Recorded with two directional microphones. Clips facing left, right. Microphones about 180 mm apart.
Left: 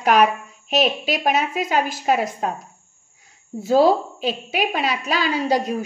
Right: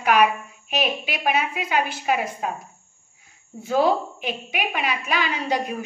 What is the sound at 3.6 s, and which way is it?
Speech, 35° left (ahead or behind).